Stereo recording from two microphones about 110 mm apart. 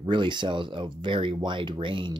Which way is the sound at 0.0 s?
45° right (ahead or behind).